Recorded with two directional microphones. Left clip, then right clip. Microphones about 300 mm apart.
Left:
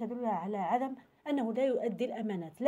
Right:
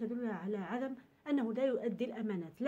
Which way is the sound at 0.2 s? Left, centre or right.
Left.